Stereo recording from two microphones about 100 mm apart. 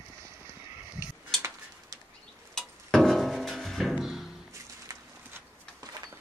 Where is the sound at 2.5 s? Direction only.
5° left (ahead or behind).